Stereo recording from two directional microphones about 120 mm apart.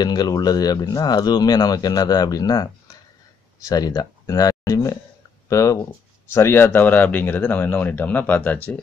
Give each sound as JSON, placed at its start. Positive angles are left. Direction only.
{"t": 0.0, "sound": "speech", "side_deg": 35}